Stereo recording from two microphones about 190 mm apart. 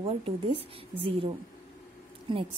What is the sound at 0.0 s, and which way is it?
Speech, 30° right (ahead or behind).